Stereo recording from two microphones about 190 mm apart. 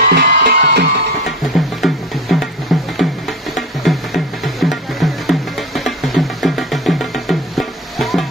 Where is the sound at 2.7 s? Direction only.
Centre (ahead or behind).